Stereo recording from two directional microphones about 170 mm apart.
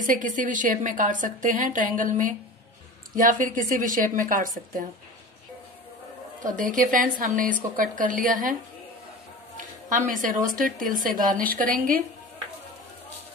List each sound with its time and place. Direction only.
0.0 s a woman's voice: 50° right (ahead or behind)
6.4 s a woman's voice: 50° right (ahead or behind)
9.6 s a woman's voice: 50° right (ahead or behind)